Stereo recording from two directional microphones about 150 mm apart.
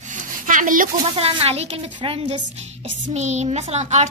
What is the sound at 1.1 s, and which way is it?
Speech, 40° right (ahead or behind).